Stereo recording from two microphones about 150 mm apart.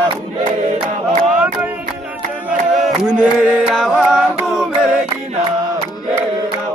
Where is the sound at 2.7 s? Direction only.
5° right (ahead or behind).